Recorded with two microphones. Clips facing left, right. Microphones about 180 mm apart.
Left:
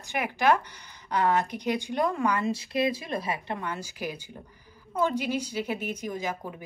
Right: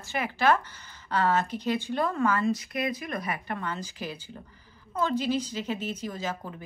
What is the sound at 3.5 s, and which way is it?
A woman's voice, 10° left (ahead or behind).